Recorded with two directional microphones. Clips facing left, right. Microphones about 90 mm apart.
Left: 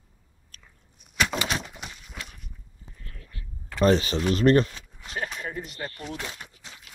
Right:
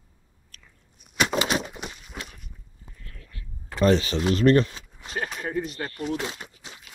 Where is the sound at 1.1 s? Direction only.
15° right (ahead or behind).